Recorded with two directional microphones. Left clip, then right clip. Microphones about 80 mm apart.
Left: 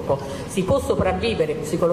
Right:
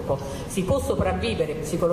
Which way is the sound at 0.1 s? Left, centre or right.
Left.